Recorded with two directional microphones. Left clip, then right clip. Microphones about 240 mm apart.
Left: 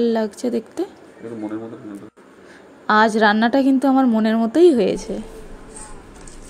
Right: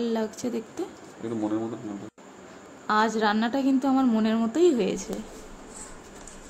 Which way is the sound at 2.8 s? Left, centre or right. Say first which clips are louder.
Left 9 dB; left.